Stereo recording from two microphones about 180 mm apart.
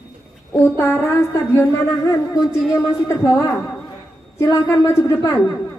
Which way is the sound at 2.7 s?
15° left (ahead or behind).